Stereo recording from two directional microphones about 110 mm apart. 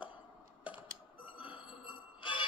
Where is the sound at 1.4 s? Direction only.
50° left (ahead or behind).